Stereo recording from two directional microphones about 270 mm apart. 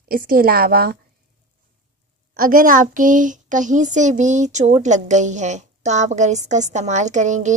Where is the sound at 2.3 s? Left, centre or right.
Right.